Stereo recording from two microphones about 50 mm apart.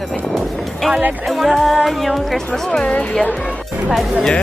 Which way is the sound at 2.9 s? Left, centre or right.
Left.